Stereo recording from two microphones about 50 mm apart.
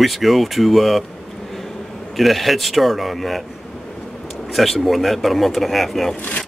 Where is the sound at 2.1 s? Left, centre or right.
Centre.